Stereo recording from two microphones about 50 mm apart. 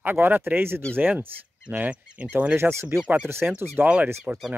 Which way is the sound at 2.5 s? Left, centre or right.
Right.